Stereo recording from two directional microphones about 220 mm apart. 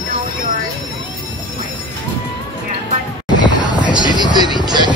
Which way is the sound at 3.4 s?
20° right (ahead or behind).